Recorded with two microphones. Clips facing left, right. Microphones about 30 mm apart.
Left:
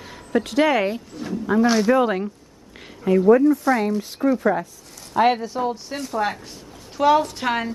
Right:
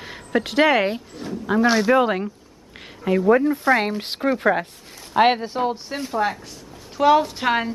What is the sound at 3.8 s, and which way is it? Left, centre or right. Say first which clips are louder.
Speech: left 2 dB; right.